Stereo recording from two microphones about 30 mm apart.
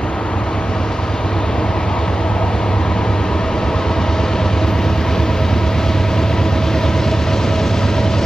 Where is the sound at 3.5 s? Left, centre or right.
Centre.